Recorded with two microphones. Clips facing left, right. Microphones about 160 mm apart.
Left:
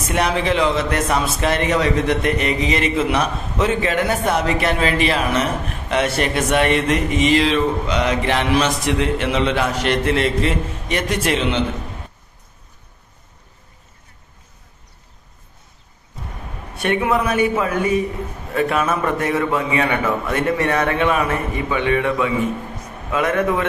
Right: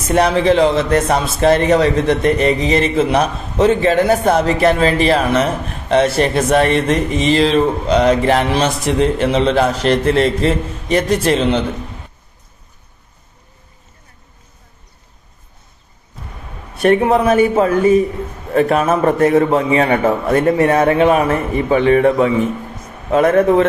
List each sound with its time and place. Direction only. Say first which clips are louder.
0.1 s a man's voice: right 7 dB; 35° right (ahead or behind)
16.8 s a man's voice: right 7 dB; 35° right (ahead or behind)
20.5 s a man's voice: right 7 dB; 25° right (ahead or behind)